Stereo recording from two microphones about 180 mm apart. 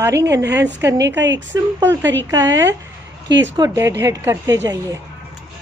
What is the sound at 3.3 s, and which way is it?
Speech, 85° right.